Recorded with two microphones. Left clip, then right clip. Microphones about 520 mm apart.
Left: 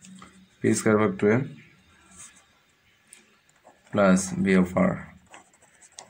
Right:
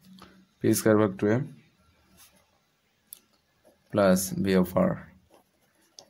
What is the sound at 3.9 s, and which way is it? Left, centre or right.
Speech, right.